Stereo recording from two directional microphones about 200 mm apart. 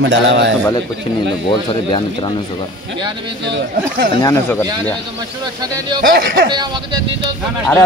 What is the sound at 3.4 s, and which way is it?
Speech, 60° right (ahead or behind).